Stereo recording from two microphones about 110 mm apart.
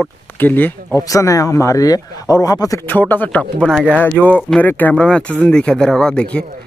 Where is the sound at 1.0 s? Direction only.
30° left (ahead or behind).